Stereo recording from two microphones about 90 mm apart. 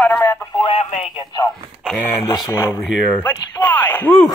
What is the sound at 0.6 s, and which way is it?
Radio, 80° left.